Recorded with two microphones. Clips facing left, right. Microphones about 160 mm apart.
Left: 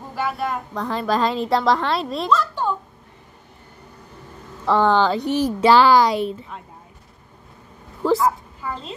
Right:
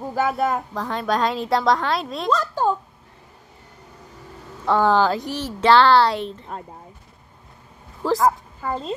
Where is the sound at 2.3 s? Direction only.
40° right (ahead or behind).